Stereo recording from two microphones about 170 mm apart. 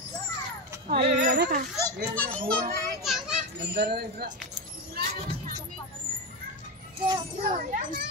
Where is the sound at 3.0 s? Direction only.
Centre (ahead or behind).